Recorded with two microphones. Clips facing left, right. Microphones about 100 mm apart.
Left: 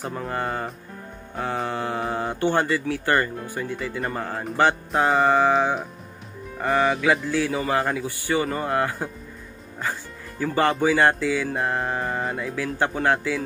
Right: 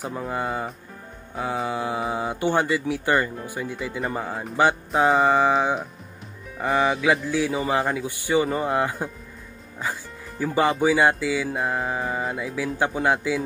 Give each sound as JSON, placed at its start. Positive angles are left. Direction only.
{"t": 0.0, "sound": "speech", "side_deg": -10}
{"t": 5.2, "sound": "speech", "side_deg": -15}
{"t": 10.4, "sound": "speech", "side_deg": -10}